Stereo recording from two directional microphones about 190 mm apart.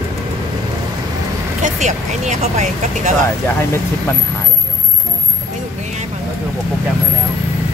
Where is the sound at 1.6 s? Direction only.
40° right (ahead or behind).